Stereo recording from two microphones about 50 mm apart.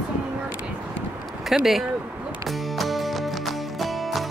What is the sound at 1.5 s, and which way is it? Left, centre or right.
Speech, centre.